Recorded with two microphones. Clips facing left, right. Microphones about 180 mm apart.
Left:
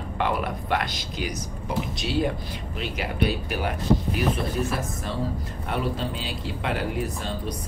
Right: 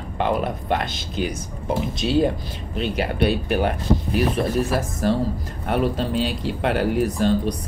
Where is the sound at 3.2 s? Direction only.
60° right (ahead or behind).